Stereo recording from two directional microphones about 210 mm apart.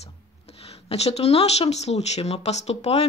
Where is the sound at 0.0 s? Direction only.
30° left (ahead or behind).